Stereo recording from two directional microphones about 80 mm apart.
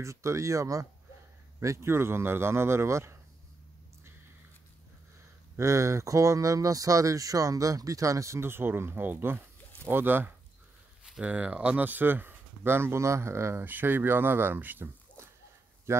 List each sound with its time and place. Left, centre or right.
0.0 s a man's voice: right
5.6 s speech: right
15.9 s a man's voice: right